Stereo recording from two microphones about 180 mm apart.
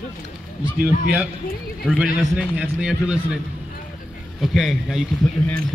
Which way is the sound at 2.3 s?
5° right (ahead or behind).